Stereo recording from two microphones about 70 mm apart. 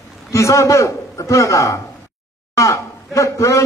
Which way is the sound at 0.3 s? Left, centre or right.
Left.